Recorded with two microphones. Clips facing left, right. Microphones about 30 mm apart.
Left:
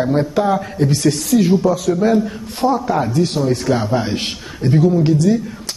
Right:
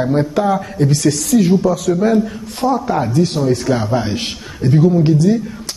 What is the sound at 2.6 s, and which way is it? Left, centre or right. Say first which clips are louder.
Speech: even; centre.